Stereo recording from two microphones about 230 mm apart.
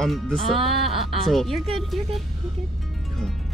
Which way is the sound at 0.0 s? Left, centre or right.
Centre.